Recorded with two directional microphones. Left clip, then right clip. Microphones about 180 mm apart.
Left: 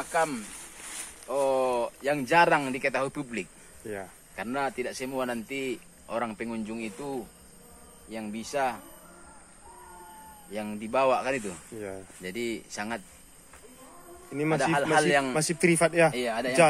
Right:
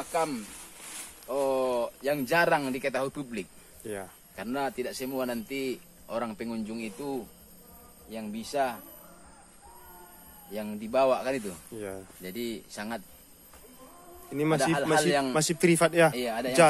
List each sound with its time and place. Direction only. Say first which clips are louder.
0.1 s speech: left 2 dB; centre (ahead or behind)
0.6 s speech: left 2 dB; 15° left (ahead or behind)
3.8 s speech: even; centre (ahead or behind); by 8.8 s 20° left (ahead or behind)
10.5 s speech: even; 20° left (ahead or behind)
11.8 s speech: even; centre (ahead or behind)
12.2 s speech: left 5 dB; 20° left (ahead or behind)
14.3 s a man's voice: right 1 dB; 15° right (ahead or behind)
14.6 s speech: left 3 dB; 20° left (ahead or behind)
15.3 s a man's voice: even; 10° right (ahead or behind)
16.1 s speech: left 1 dB; 5° left (ahead or behind)